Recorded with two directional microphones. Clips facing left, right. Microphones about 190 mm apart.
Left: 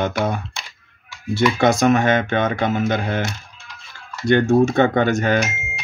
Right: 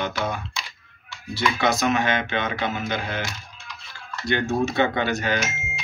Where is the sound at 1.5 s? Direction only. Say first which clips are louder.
Left 6 dB; 50° left (ahead or behind).